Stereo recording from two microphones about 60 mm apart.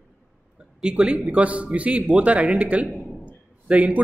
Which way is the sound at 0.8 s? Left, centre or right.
Centre.